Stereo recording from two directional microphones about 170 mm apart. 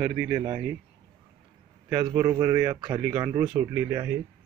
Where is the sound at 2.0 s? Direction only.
20° right (ahead or behind).